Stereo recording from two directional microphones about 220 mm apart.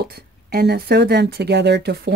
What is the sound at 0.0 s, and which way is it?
Speech, 45° right (ahead or behind).